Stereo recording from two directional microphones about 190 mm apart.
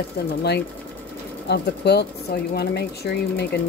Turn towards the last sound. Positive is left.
turn(degrees=60)  # may be behind; listen again after turning